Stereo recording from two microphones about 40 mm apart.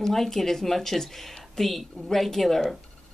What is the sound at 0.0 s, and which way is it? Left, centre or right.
Speech, centre.